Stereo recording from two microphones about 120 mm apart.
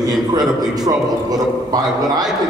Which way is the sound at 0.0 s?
35° right (ahead or behind).